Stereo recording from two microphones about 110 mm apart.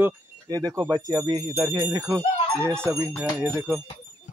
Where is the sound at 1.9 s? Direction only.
30° right (ahead or behind).